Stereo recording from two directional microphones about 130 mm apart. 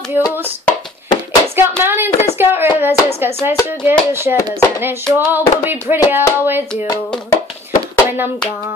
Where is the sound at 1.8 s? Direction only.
15° right (ahead or behind).